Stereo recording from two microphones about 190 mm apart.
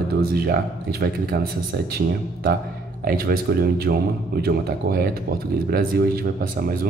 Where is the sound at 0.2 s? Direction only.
55° right (ahead or behind).